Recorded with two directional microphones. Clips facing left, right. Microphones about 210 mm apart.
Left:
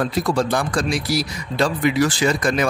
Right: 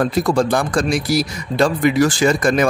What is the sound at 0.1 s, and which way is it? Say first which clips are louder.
Speech: right 4 dB; 50° right (ahead or behind).